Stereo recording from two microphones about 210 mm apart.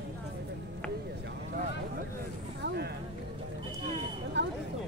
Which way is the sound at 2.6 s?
50° right (ahead or behind).